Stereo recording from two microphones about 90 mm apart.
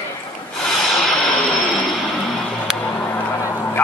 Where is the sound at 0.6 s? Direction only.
5° left (ahead or behind).